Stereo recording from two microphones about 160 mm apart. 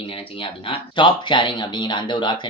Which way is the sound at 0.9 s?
30° left (ahead or behind).